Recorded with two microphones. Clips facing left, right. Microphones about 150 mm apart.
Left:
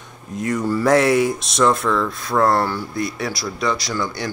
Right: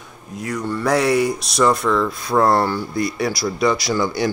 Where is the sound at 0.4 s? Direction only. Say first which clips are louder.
Left 3 dB; centre (ahead or behind).